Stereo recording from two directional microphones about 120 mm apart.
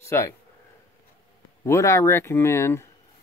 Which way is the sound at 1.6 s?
25° left (ahead or behind).